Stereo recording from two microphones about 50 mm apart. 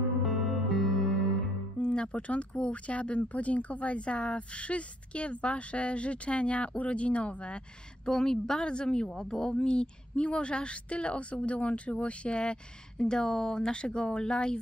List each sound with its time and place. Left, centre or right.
0.2 s music: centre
1.8 s a woman's voice: left
8.1 s a woman's voice: centre